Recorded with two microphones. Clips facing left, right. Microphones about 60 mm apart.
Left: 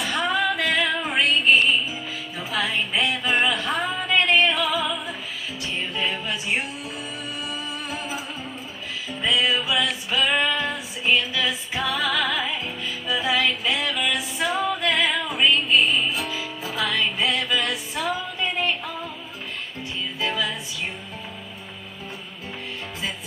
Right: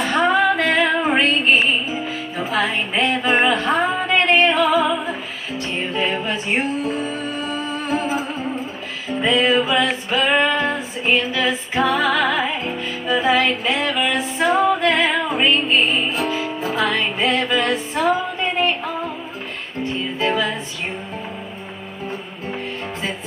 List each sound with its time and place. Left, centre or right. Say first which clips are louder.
0.0 s female singing: right 7 dB; right
3.4 s music: right 6 dB; right